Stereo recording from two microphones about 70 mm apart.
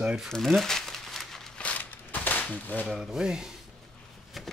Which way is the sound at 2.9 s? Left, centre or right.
Centre.